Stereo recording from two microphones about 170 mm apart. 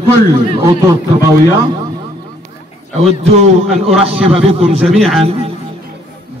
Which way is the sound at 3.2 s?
40° right (ahead or behind).